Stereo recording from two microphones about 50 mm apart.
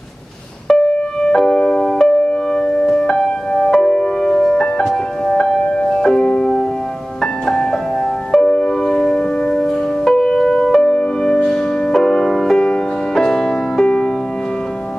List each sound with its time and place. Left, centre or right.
0.7 s music: centre
8.3 s music: centre